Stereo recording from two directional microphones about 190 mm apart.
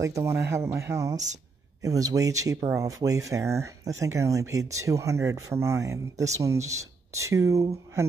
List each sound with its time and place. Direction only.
0.0 s speech: 15° right (ahead or behind)